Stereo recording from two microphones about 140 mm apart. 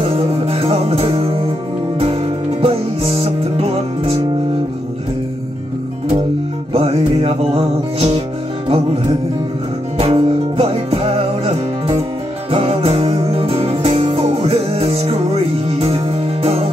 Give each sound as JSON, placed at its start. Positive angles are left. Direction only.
{"t": 0.0, "sound": "music", "side_deg": -45}
{"t": 2.6, "sound": "music", "side_deg": -45}
{"t": 6.7, "sound": "music", "side_deg": -45}
{"t": 9.9, "sound": "music", "side_deg": -40}